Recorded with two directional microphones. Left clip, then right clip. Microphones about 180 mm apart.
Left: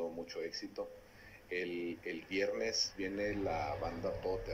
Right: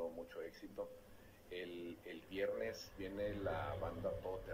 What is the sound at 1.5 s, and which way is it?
Speech, 10° left (ahead or behind).